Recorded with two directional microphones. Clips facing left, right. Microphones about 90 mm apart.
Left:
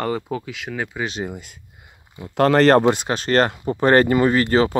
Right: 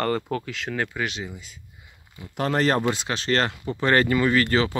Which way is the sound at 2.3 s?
80° left.